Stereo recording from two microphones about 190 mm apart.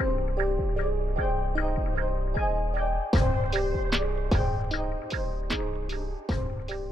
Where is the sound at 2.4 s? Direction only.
Centre (ahead or behind).